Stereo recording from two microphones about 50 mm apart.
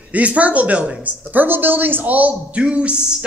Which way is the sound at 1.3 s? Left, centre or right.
Right.